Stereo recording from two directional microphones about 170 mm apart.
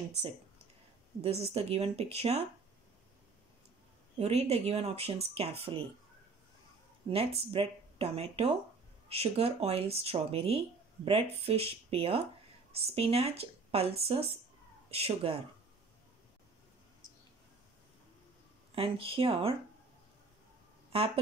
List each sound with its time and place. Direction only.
1.5 s speech: 35° right (ahead or behind)
4.2 s speech: 40° right (ahead or behind)
7.1 s speech: 35° right (ahead or behind)
18.8 s speech: 35° right (ahead or behind)